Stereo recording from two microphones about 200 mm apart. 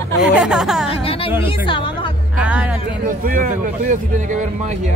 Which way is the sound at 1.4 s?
25° left (ahead or behind).